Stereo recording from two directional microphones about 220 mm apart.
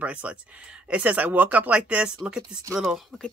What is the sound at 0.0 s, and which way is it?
Speech, 5° right (ahead or behind).